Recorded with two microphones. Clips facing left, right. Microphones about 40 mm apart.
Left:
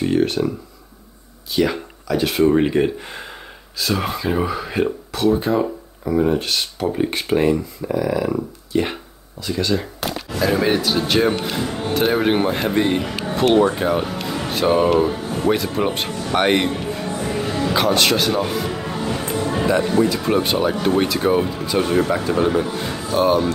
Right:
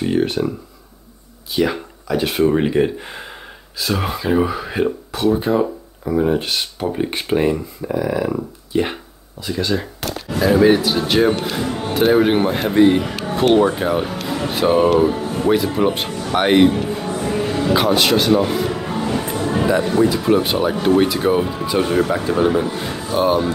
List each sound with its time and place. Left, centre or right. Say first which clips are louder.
0.0 s speech: even; centre
1.5 s speech: even; centre
13.2 s music: right 1 dB; centre
13.6 s speech: right 1 dB; centre
14.2 s music: right 2 dB; centre
15.0 s speech: right 2 dB; centre
16.9 s music: right 2 dB; centre
20.2 s speech: right 2 dB; centre